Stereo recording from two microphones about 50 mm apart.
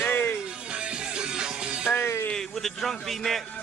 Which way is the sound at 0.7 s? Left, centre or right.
Centre.